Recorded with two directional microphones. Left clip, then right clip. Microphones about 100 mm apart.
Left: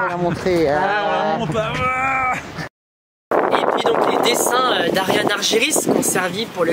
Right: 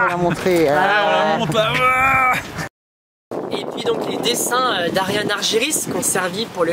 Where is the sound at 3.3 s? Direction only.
45° left (ahead or behind).